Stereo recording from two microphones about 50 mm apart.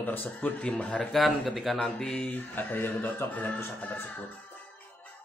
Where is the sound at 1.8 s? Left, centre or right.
Centre.